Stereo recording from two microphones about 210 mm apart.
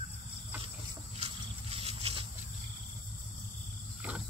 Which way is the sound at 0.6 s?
25° right (ahead or behind).